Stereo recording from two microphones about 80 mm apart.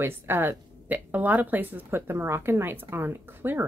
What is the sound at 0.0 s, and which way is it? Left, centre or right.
Speech, right.